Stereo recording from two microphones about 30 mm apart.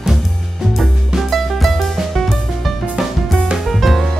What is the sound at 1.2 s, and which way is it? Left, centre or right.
Music, centre.